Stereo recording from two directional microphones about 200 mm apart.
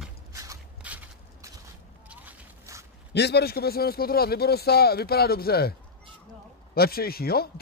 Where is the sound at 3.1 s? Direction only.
55° left (ahead or behind).